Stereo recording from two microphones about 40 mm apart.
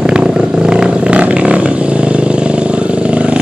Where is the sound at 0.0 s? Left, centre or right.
Centre.